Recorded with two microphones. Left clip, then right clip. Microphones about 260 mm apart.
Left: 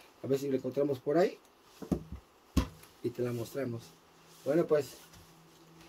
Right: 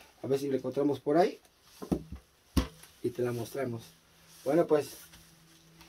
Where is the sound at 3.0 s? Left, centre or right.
Centre.